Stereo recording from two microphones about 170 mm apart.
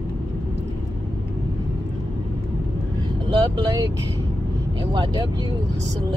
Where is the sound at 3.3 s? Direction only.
25° right (ahead or behind).